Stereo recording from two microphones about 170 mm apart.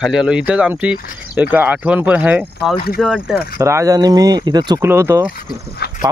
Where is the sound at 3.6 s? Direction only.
20° right (ahead or behind).